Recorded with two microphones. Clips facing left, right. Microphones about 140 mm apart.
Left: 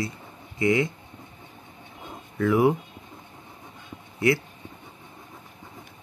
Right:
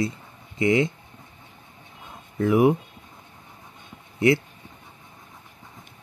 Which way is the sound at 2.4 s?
20° right (ahead or behind).